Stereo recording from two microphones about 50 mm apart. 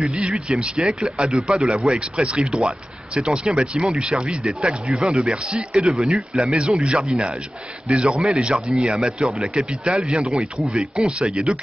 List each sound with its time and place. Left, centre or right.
0.0 s speech: centre
6.5 s speech: right